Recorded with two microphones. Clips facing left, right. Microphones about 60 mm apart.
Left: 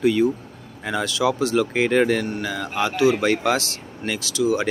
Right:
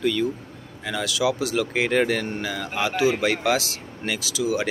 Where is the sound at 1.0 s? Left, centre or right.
Centre.